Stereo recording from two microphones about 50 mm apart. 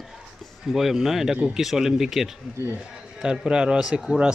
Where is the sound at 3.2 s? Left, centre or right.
Centre.